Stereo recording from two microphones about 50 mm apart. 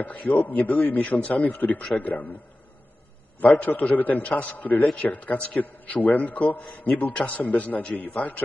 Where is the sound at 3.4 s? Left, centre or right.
Left.